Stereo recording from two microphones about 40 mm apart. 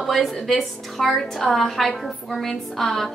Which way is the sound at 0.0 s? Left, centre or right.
Centre.